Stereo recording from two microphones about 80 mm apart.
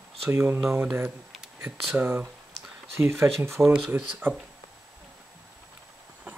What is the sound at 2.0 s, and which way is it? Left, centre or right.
Speech, centre.